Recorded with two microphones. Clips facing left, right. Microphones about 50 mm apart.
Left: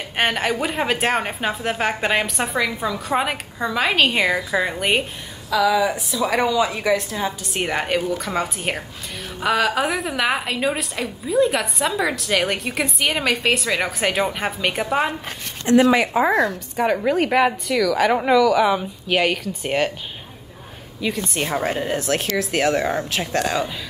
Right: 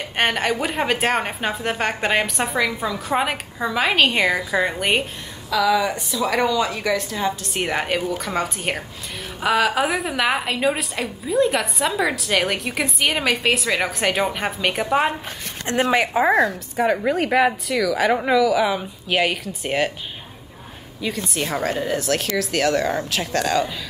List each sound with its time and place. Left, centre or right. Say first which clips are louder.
0.2 s a woman's voice: even; centre
15.6 s speech: left 4 dB; right
16.2 s a woman's voice: right 1 dB; right
16.7 s a woman's voice: left 1 dB; centre
21.6 s a woman's voice: even; left